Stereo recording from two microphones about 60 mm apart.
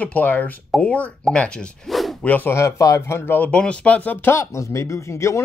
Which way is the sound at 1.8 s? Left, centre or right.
Centre.